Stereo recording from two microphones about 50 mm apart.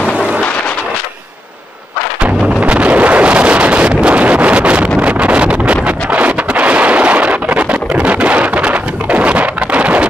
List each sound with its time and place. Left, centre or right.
2.2 s wind noise: right